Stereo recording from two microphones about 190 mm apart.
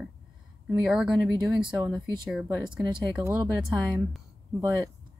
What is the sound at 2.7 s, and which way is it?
Speech, 25° right (ahead or behind).